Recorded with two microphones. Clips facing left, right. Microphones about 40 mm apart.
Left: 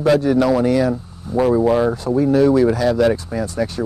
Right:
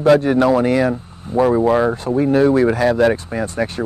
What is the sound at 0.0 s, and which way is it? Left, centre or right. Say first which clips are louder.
Speech: right 2 dB; right.